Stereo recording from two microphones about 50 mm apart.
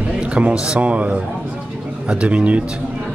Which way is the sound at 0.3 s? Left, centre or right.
Right.